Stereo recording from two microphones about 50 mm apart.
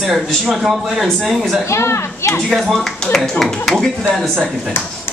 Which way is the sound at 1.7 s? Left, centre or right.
Left.